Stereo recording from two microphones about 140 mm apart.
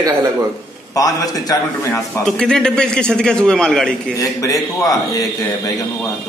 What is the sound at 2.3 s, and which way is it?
A man's voice, 5° left (ahead or behind).